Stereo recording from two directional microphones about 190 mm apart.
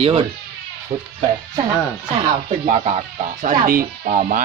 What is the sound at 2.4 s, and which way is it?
Speech, 35° right (ahead or behind).